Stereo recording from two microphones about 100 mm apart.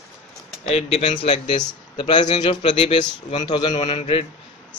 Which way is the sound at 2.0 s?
50° left (ahead or behind).